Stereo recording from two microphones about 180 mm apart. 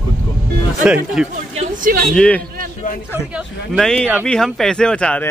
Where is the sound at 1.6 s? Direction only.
50° right (ahead or behind).